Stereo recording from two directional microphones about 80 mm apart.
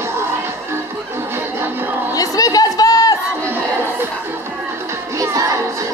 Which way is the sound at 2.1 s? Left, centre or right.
Left.